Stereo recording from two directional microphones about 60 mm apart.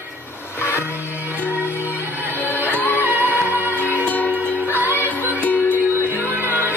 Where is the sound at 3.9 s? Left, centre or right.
Left.